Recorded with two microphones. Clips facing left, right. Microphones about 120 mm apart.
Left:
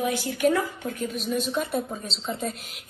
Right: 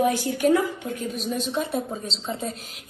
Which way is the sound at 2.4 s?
40° right (ahead or behind).